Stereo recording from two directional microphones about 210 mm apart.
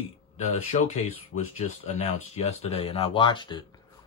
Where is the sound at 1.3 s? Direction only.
90° left.